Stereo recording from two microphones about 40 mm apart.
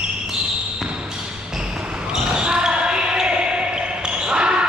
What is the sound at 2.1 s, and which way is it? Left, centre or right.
Basketball bounce, centre.